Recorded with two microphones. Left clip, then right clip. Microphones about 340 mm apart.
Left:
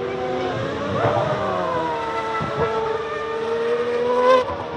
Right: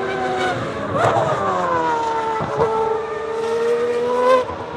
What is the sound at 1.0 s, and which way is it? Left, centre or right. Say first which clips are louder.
Vehicle: right 4 dB; right.